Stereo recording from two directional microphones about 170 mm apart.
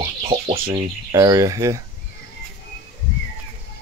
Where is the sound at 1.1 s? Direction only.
20° right (ahead or behind).